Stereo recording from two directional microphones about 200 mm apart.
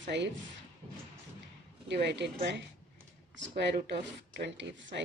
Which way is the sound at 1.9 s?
60° right (ahead or behind).